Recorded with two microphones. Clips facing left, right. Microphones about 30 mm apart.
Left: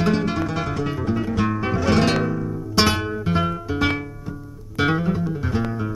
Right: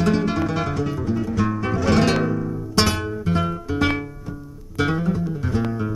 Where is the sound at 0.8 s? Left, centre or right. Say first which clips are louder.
Even; left.